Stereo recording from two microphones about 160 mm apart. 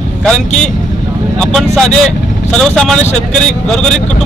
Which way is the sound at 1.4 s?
5° left (ahead or behind).